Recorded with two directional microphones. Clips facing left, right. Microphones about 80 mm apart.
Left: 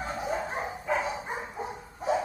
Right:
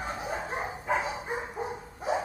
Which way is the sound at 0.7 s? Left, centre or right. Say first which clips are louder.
Even; right.